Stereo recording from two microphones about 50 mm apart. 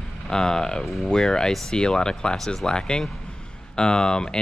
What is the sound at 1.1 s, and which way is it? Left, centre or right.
Speech, centre.